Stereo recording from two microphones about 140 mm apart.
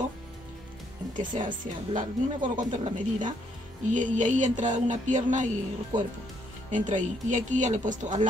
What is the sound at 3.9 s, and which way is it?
Music, 65° right (ahead or behind).